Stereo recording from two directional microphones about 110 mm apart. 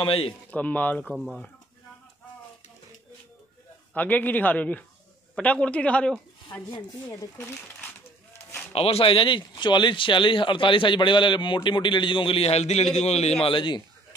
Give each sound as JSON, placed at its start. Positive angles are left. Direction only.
{"t": 0.0, "sound": "speech", "side_deg": 55}
{"t": 0.5, "sound": "a man's voice", "side_deg": 15}
{"t": 1.1, "sound": "speech", "side_deg": 0}
{"t": 3.9, "sound": "a man's voice", "side_deg": 15}
{"t": 6.5, "sound": "speech", "side_deg": 30}
{"t": 8.7, "sound": "speech", "side_deg": 60}
{"t": 13.5, "sound": "speech", "side_deg": 45}